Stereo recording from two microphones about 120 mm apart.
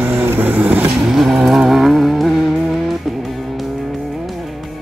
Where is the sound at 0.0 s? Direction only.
20° right (ahead or behind); by 2.3 s centre (ahead or behind).